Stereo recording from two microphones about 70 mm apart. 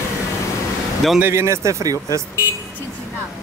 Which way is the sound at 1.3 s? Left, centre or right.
Right.